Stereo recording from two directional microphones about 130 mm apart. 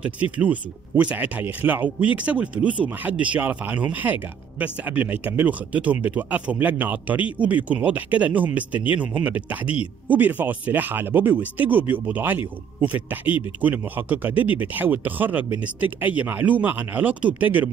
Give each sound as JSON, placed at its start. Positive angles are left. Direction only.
{"t": 0.0, "sound": "speech", "side_deg": -10}